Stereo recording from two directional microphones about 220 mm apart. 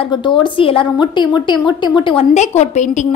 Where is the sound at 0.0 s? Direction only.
20° left (ahead or behind).